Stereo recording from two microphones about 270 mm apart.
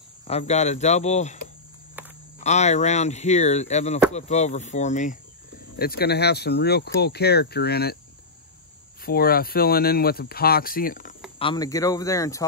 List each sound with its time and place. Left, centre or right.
0.3 s speech: left
2.0 s cricket: centre
2.4 s speech: left
9.0 s speech: left
11.3 s speech: centre